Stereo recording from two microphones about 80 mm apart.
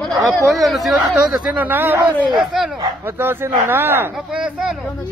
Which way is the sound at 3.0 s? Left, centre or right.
Right.